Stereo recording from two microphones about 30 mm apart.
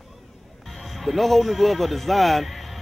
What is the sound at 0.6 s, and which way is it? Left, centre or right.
Speech, centre.